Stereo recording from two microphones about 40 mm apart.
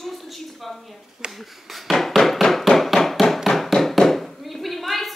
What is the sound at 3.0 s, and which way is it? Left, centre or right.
Hammer, centre.